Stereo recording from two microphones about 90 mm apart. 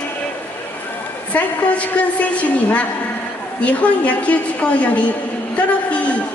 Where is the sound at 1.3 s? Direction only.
15° left (ahead or behind).